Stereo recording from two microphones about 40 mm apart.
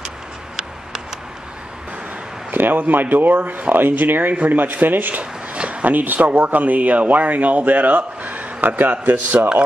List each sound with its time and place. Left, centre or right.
2.5 s speech: right
5.2 s a sound: right
6.3 s speech: right